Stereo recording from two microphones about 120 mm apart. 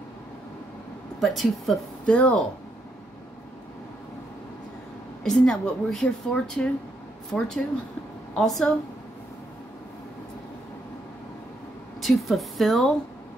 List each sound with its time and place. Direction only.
1.2 s a woman's voice: centre (ahead or behind)
5.2 s a woman's voice: 5° left (ahead or behind)
12.0 s a woman's voice: centre (ahead or behind)